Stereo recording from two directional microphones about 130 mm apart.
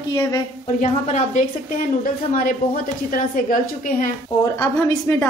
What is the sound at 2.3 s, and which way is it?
A woman's voice, 90° left.